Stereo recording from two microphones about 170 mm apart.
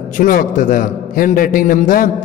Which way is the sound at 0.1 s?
55° left (ahead or behind).